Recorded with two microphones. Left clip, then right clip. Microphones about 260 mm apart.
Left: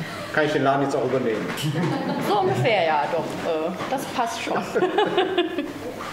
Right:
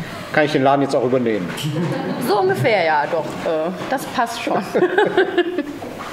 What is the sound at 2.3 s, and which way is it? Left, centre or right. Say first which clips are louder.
Speech: right 5 dB; right.